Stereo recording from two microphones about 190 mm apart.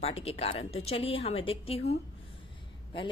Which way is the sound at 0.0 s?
30° left (ahead or behind).